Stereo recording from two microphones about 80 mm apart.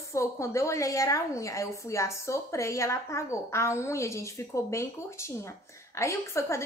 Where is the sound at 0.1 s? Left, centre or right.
Left.